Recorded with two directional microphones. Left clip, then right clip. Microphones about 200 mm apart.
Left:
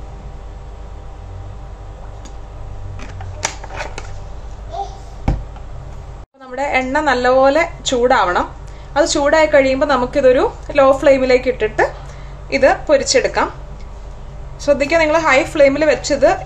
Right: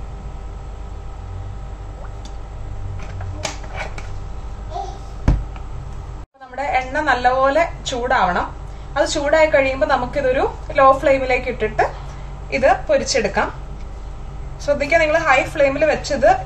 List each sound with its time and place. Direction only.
6.5 s a woman's voice: 50° left (ahead or behind)
14.6 s a woman's voice: 55° left (ahead or behind)